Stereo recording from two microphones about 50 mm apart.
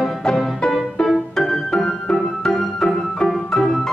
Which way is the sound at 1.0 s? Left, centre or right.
Left.